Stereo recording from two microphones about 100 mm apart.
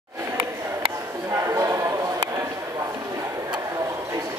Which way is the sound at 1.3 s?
30° right (ahead or behind).